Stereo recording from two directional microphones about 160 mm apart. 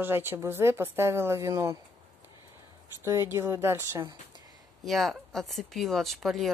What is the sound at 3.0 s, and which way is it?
Speech, 15° right (ahead or behind).